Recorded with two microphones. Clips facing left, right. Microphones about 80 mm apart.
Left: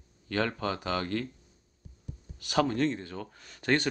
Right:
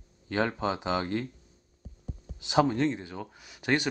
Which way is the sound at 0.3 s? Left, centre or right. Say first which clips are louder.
Right 2 dB; centre.